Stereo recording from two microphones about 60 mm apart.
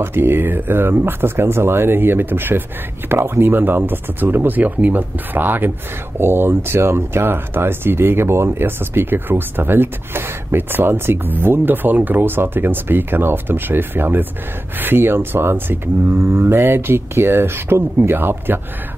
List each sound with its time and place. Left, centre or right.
0.0 s speech: right